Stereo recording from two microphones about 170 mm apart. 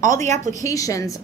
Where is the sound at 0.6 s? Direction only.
20° left (ahead or behind).